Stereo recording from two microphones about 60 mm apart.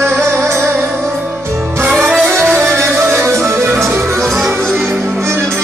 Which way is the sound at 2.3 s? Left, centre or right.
Right.